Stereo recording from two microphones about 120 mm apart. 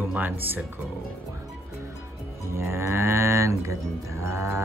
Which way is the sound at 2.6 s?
20° right (ahead or behind).